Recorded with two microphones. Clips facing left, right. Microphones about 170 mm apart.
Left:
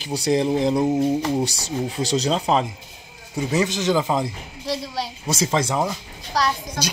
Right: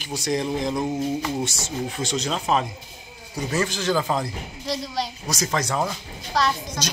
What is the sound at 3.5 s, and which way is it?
Speech, 20° left (ahead or behind).